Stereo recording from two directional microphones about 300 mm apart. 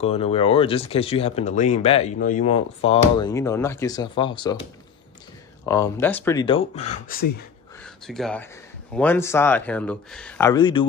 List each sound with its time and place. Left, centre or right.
0.0 s speech: centre
5.7 s speech: centre; by 7.2 s left
7.8 s speech: centre